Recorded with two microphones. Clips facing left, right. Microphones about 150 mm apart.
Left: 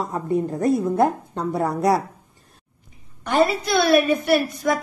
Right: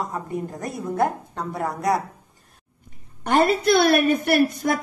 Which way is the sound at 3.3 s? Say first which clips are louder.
Right 1 dB; 60° right (ahead or behind).